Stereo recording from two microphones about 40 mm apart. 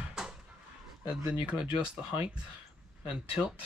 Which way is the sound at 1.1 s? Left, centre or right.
Right.